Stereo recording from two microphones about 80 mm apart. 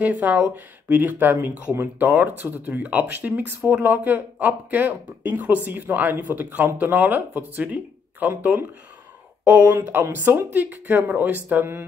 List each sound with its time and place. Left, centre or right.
0.0 s speech: centre